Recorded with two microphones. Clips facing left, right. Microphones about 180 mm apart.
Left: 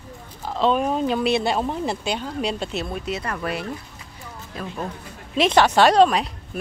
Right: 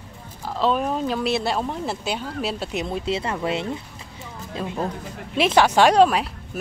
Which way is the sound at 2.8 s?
25° right (ahead or behind).